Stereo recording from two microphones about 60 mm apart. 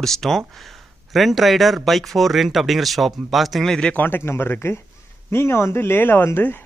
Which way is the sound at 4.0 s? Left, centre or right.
Left.